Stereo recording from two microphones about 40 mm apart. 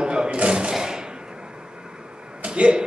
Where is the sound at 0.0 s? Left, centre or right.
Right.